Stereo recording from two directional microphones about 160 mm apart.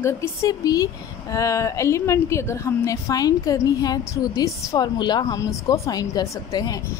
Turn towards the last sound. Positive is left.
turn(degrees=25)  # may be behind; listen again after turning